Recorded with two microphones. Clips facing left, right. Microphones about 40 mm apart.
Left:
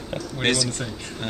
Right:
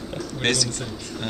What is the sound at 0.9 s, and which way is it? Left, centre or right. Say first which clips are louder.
Speech: right 1 dB; left.